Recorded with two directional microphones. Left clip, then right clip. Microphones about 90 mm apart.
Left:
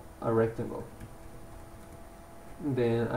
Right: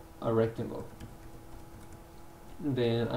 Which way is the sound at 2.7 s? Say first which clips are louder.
Left 2 dB; 20° right (ahead or behind).